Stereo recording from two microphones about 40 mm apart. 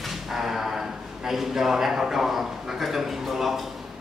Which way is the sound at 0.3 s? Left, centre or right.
Centre.